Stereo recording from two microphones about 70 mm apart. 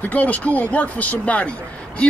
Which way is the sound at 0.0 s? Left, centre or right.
Left.